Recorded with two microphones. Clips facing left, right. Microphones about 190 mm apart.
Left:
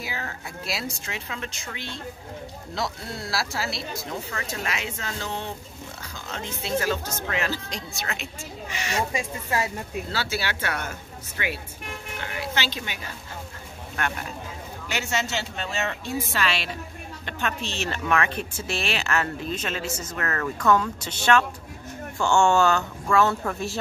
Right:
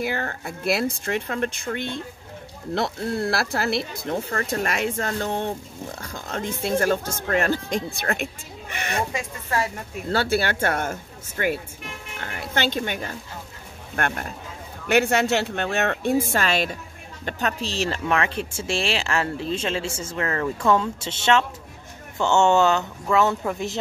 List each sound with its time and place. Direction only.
0.0 s speech: 55° right (ahead or behind)
10.0 s a woman's voice: 55° right (ahead or behind); by 23.8 s 15° right (ahead or behind)